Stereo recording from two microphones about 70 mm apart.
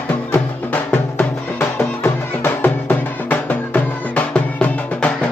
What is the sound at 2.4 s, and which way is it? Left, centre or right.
Music, left.